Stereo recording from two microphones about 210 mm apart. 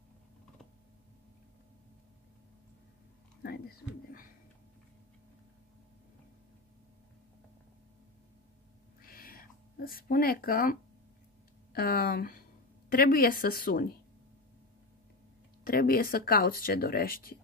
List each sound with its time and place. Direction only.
3.4 s speech: 45° left (ahead or behind)
9.0 s a sound: 45° left (ahead or behind)
11.7 s speech: 45° left (ahead or behind)
15.6 s speech: 45° left (ahead or behind)